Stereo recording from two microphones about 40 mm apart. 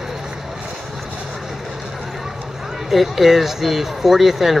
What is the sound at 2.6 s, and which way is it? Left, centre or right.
Speech, centre.